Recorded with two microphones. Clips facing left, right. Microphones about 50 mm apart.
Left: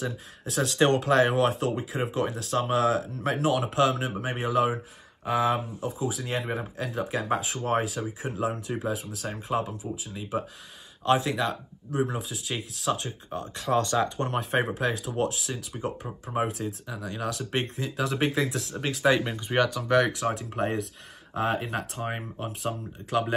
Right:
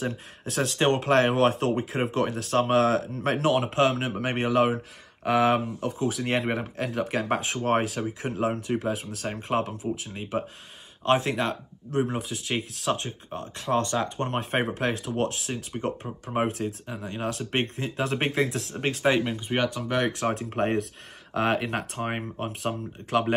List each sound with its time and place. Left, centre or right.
0.0 s speech: right
4.2 s speech: right
19.3 s speech: centre
20.1 s speech: right
21.3 s speech: right
21.7 s speech: right